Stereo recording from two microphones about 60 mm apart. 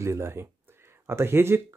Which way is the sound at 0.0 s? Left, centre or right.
Right.